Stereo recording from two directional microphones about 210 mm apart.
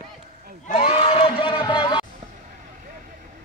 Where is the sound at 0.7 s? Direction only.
30° left (ahead or behind).